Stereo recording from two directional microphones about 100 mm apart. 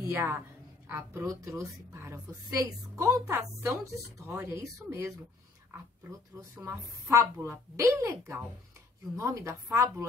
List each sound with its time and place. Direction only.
0.0 s a woman's voice: 30° right (ahead or behind)
6.5 s a woman's voice: 25° right (ahead or behind)